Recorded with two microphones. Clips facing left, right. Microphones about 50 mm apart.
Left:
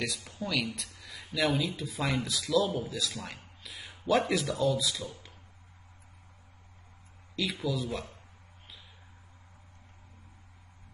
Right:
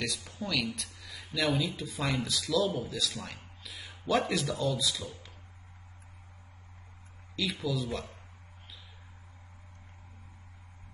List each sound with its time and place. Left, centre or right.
0.0 s speech: centre
1.0 s a sound: centre
1.6 s speech: centre
3.6 s a sound: centre
4.0 s speech: centre
7.6 s speech: centre